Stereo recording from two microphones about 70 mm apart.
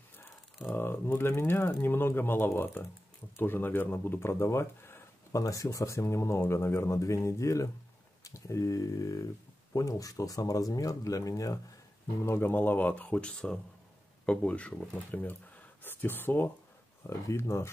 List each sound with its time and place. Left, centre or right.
0.7 s speech: left
5.3 s speech: left
12.3 s speech: left; by 14.9 s centre
15.0 s speech: left
17.0 s speech: left